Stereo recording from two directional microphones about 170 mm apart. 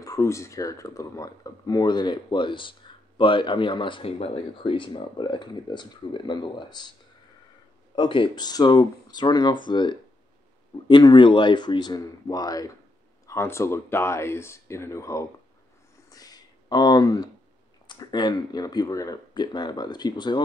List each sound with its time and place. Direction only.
0.0 s speech: 15° left (ahead or behind)
7.9 s speech: 30° left (ahead or behind)
16.1 s a sound: 20° left (ahead or behind)
17.8 s speech: 25° left (ahead or behind)